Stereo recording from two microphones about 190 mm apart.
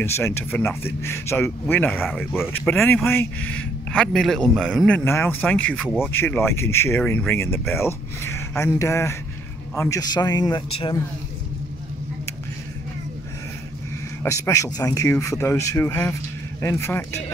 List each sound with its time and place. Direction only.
0.0 s a man's voice: 10° left (ahead or behind)
14.2 s a man's voice: 15° left (ahead or behind)